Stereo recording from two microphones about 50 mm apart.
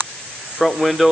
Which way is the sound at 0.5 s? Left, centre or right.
Centre.